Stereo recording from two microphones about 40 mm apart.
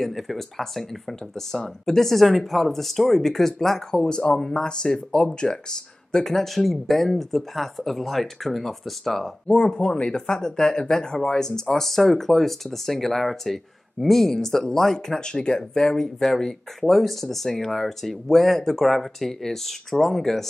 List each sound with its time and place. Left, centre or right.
0.0 s speech: centre
4.0 s speech: left; by 9.3 s centre
9.5 s speech: left; by 20.4 s centre